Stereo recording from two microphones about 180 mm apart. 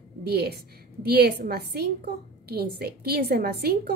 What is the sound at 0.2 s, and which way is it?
A woman's voice, 65° right (ahead or behind).